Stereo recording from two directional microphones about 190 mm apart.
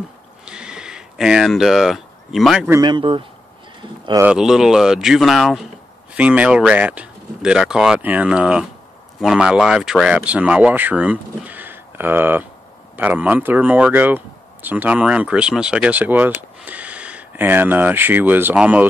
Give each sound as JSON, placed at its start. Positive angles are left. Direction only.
{"t": 0.5, "sound": "a sound", "side_deg": -5}
{"t": 2.7, "sound": "speech", "side_deg": -25}
{"t": 4.2, "sound": "speech", "side_deg": -5}